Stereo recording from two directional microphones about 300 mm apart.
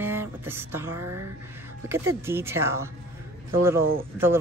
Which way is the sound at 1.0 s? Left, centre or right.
Right.